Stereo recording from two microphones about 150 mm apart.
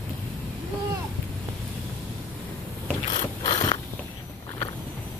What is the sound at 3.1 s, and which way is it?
Ratchet, 30° left (ahead or behind).